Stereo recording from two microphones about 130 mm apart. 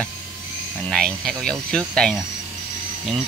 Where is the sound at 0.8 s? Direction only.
5° left (ahead or behind).